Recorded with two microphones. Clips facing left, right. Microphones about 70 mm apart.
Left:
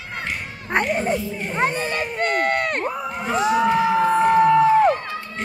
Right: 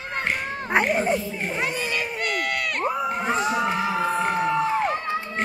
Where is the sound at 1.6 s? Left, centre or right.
Left.